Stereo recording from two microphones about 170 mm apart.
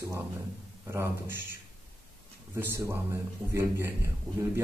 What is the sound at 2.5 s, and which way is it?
Speech, 15° right (ahead or behind).